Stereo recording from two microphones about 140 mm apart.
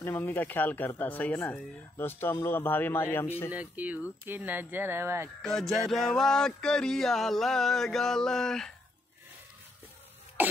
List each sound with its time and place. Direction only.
0.0 s speech: 15° left (ahead or behind)
3.5 s speech: 10° right (ahead or behind)
5.4 s a sound: 5° left (ahead or behind)